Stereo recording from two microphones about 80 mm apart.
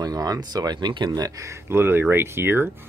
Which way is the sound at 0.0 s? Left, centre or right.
Right.